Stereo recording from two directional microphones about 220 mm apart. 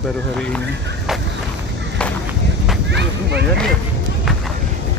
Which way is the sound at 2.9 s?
50° right (ahead or behind).